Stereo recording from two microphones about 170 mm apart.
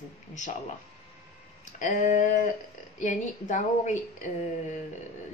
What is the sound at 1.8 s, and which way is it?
Speech, 45° left (ahead or behind).